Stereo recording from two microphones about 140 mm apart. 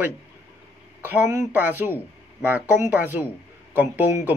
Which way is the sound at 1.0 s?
15° right (ahead or behind).